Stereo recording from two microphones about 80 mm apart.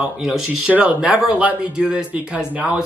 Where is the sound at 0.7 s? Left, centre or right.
Centre.